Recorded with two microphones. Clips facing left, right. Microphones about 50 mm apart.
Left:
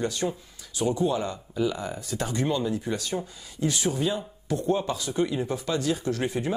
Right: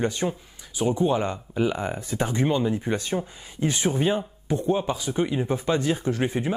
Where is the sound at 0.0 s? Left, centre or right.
Right.